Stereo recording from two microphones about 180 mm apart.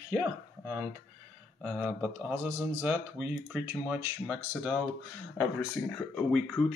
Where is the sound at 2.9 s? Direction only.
10° right (ahead or behind).